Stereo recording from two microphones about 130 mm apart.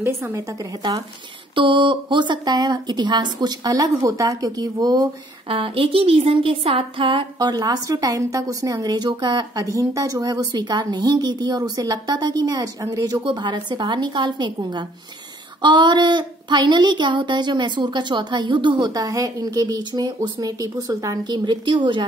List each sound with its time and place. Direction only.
0.0 s a woman's voice: 20° right (ahead or behind)
1.5 s a woman's voice: 40° right (ahead or behind)
5.5 s a woman's voice: 45° right (ahead or behind)